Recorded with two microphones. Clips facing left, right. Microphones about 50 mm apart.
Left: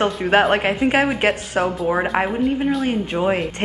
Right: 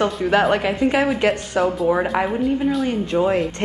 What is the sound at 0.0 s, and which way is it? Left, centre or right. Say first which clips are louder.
Speech: left 1 dB; left.